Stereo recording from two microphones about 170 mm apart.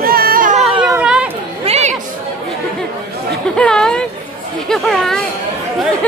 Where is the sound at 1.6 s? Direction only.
40° right (ahead or behind).